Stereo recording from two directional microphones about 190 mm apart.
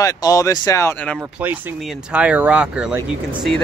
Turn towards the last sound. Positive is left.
turn(degrees=-5)  # may be behind; listen again after turning